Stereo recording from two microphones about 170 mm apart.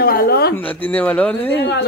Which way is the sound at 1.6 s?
75° left (ahead or behind).